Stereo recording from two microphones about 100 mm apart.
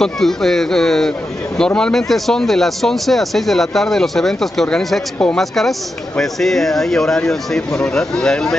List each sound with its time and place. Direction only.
0.0 s speech: 5° left (ahead or behind)